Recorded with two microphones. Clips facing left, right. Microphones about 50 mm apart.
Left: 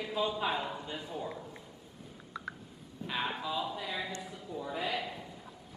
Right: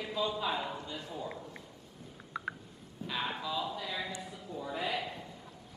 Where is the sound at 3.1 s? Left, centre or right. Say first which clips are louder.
Left 1 dB; centre.